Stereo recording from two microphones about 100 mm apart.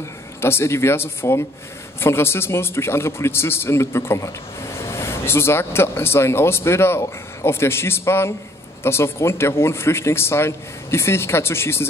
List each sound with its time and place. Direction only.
0.4 s a man's voice: 25° left (ahead or behind)